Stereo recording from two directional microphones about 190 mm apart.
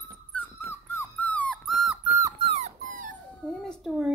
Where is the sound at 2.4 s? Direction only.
35° right (ahead or behind).